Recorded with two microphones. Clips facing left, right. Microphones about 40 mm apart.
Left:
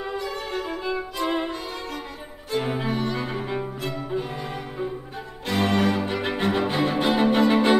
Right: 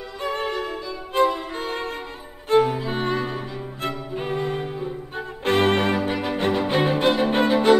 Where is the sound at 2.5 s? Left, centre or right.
Right.